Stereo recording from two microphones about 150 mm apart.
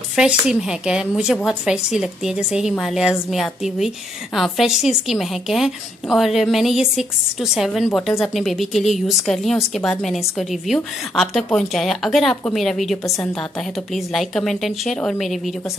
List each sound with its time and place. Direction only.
0.1 s a woman's voice: 5° right (ahead or behind)
13.0 s a woman's voice: 20° left (ahead or behind)
13.4 s a woman's voice: centre (ahead or behind)